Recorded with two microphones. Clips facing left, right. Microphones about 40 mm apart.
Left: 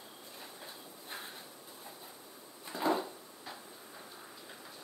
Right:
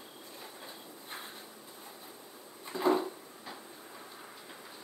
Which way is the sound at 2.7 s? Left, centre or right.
Centre.